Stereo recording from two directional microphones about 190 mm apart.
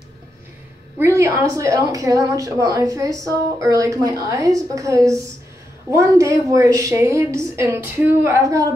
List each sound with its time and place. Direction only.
0.9 s a woman's voice: 15° right (ahead or behind)